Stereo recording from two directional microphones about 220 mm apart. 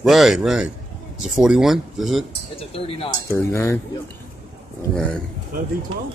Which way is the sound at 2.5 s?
25° left (ahead or behind).